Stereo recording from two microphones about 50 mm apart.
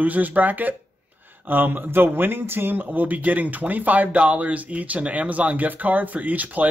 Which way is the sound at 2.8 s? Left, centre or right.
Right.